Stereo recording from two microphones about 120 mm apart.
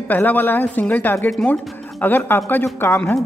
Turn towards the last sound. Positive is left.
turn(degrees=20)  # may be behind; listen again after turning